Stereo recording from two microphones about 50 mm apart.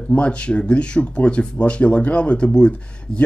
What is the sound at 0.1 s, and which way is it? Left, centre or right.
Speech, left.